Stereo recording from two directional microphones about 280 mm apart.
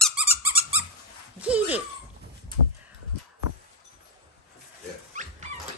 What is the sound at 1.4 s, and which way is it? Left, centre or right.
Speech, centre.